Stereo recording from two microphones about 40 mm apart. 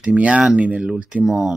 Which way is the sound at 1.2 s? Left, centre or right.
Centre.